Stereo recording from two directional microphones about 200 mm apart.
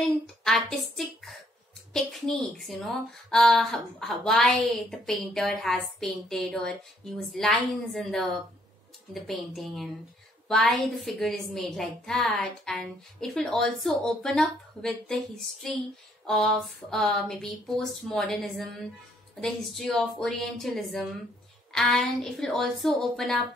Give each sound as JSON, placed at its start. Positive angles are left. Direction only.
{"t": 0.4, "sound": "a woman's voice", "side_deg": 0}